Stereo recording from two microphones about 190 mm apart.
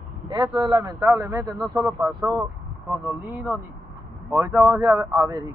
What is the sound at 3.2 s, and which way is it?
Speech, 10° right (ahead or behind).